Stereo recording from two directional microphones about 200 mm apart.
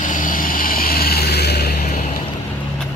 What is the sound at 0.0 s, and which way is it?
Vehicle, 40° left (ahead or behind).